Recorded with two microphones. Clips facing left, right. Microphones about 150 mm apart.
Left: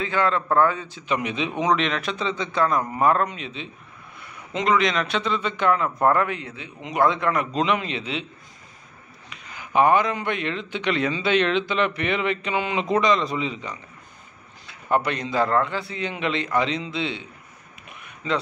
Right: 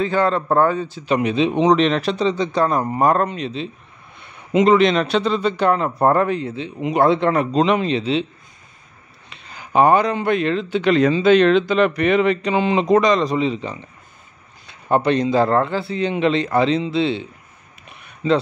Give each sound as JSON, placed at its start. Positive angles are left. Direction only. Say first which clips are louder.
{"t": 0.0, "sound": "speech", "louder": "right 5 dB", "side_deg": -35}
{"t": 4.6, "sound": "speech", "louder": "right 5 dB", "side_deg": -30}
{"t": 9.3, "sound": "speech", "louder": "right 4 dB", "side_deg": -30}
{"t": 18.0, "sound": "a sound", "louder": "right 8 dB", "side_deg": -30}